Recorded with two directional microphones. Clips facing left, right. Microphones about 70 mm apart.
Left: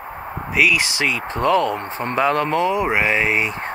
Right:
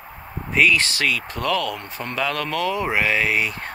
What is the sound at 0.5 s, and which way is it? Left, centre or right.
Speech, centre.